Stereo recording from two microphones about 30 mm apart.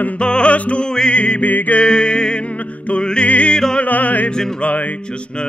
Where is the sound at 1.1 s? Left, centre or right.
Left.